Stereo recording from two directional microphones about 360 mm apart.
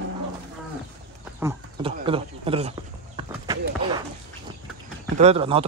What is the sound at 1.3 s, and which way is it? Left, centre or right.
Speech, centre.